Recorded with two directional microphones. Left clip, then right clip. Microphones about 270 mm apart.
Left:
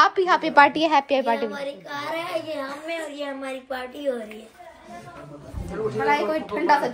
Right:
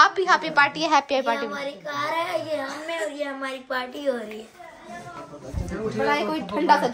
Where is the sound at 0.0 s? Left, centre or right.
Centre.